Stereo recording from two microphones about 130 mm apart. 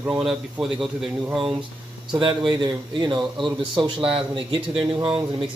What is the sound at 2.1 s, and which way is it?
Speech, 40° right (ahead or behind).